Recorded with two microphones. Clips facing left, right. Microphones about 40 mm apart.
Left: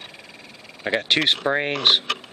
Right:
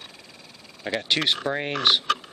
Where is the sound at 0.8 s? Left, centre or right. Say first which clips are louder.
Left 4 dB; left.